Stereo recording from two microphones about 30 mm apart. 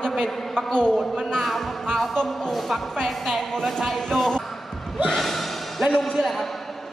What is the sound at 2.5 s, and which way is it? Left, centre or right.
Speech, centre.